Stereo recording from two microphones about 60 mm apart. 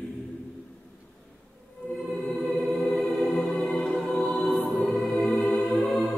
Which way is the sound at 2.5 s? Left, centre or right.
Centre.